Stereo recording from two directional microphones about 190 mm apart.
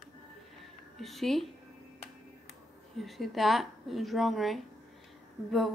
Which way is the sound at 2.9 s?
Centre (ahead or behind).